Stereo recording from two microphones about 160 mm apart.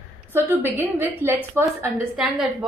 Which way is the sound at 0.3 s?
15° right (ahead or behind).